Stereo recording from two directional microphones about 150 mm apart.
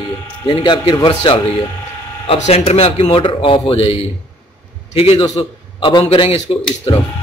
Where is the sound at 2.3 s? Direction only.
40° left (ahead or behind).